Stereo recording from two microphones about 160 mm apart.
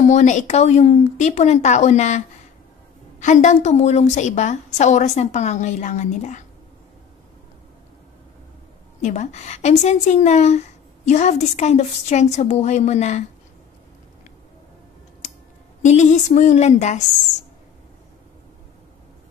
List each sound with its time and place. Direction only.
0.0 s a woman's voice: 50° left (ahead or behind)
9.0 s a woman's voice: 45° left (ahead or behind)
15.2 s a sound: 50° left (ahead or behind)
15.8 s a woman's voice: 50° left (ahead or behind)